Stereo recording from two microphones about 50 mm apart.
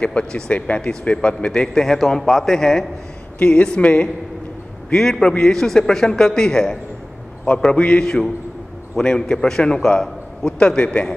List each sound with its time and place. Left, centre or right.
0.0 s speech: centre
3.3 s speech: left
4.8 s a man's voice: centre